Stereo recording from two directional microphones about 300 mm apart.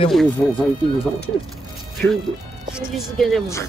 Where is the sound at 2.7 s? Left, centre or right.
Centre.